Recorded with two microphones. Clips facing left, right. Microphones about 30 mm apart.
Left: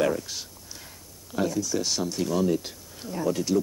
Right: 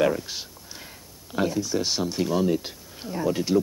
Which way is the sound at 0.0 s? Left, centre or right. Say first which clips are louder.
Right 2 dB; centre.